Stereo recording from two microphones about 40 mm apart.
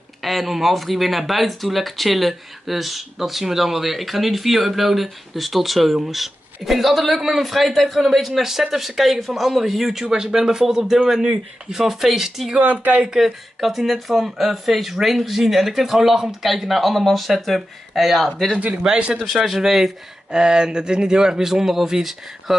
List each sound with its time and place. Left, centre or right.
0.2 s speech: centre
10.0 s speech: centre
12.5 s speech: right
13.2 s speech: centre
19.3 s speech: centre
20.2 s speech: centre